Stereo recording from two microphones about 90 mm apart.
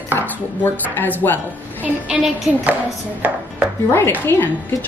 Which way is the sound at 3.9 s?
25° left (ahead or behind).